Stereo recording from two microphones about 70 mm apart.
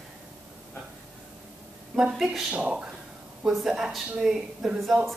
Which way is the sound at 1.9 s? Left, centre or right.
Centre.